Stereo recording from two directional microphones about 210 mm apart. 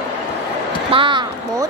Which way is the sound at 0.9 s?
25° right (ahead or behind).